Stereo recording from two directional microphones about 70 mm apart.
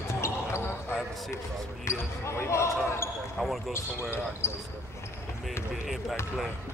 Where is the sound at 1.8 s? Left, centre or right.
Left.